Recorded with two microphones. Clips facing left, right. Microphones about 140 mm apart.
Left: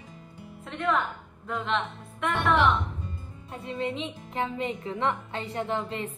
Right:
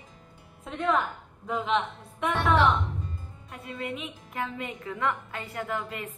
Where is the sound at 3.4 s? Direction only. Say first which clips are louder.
Left 4 dB; 25° left (ahead or behind).